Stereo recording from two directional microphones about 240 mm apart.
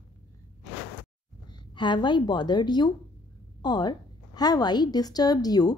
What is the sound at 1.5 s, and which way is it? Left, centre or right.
A woman's voice, centre.